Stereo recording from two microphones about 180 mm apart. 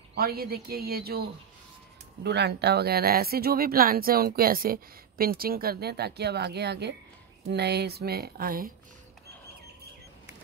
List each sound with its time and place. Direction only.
0.1 s a woman's voice: 60° right (ahead or behind)
2.2 s speech: 70° right (ahead or behind); by 8.7 s 55° right (ahead or behind)